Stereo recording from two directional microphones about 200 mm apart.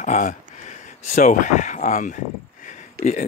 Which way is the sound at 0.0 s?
40° left (ahead or behind).